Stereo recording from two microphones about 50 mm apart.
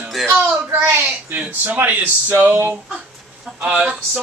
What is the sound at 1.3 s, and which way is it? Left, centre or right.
Speech, right.